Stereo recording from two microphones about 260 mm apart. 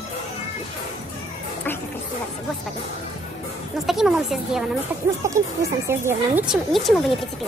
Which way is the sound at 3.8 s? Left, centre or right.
Centre.